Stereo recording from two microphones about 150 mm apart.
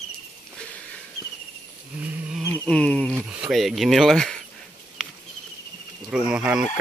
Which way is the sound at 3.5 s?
Centre (ahead or behind).